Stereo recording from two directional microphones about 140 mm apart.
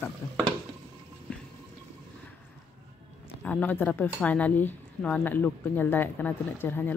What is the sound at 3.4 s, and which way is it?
Speech, 10° left (ahead or behind).